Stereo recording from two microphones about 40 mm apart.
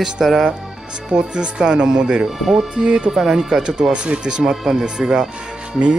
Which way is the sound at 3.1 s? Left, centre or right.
Centre.